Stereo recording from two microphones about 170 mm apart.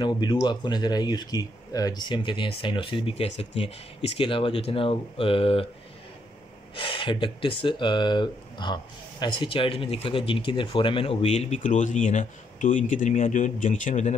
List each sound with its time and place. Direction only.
0.0 s speech: 25° left (ahead or behind)
6.7 s speech: 30° left (ahead or behind); by 14.1 s 45° left (ahead or behind)